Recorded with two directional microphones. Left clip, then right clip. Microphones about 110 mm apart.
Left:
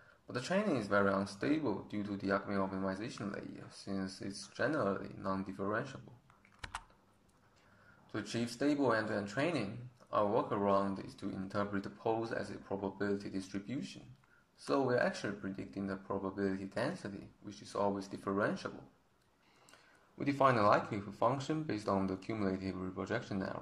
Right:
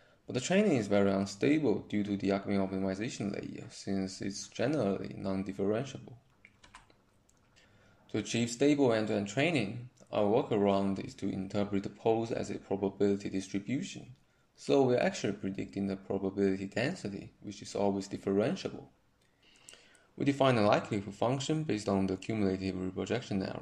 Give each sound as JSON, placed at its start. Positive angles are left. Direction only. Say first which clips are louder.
{"t": 0.3, "sound": "speech", "louder": "right 6 dB", "side_deg": -20}
{"t": 8.1, "sound": "speech", "louder": "right 6 dB", "side_deg": -20}
{"t": 19.7, "sound": "speech", "louder": "right 5 dB", "side_deg": -15}